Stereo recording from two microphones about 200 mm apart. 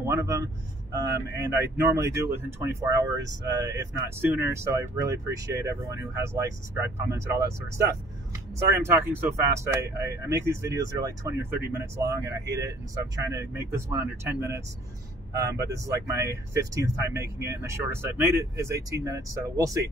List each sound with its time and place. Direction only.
0.0 s speech: 15° right (ahead or behind)
8.5 s speech: 10° right (ahead or behind)